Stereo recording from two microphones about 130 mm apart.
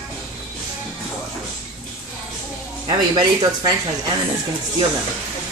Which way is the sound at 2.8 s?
30° right (ahead or behind).